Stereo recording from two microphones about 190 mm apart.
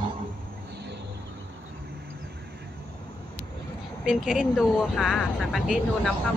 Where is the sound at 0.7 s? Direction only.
65° right (ahead or behind).